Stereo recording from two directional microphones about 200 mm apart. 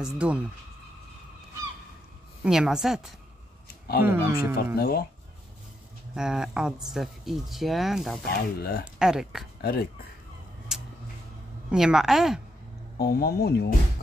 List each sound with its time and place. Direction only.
0.0 s speech: 5° right (ahead or behind)
2.4 s speech: 5° right (ahead or behind)
4.0 s speech: 10° right (ahead or behind)
4.7 s speech: 50° left (ahead or behind)
6.1 s speech: 5° right (ahead or behind)
8.4 s speech: 50° left (ahead or behind)
8.8 s speech: 5° right (ahead or behind)
9.6 s speech: 50° left (ahead or behind)
11.7 s speech: centre (ahead or behind)
12.9 s speech: 50° left (ahead or behind)